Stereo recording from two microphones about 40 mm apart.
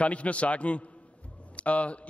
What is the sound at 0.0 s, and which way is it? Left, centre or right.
A man's voice, left.